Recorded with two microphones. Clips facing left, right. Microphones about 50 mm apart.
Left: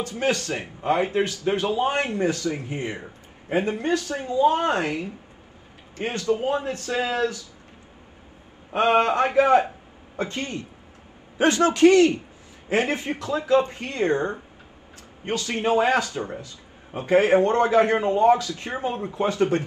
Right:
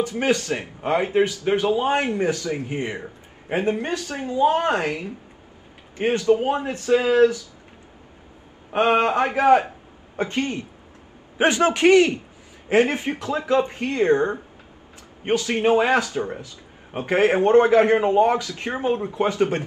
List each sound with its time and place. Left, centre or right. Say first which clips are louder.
0.0 s a man's voice: right 3 dB; right
8.7 s a man's voice: right 1 dB; right